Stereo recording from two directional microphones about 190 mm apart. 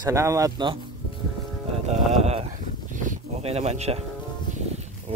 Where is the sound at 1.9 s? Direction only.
35° right (ahead or behind).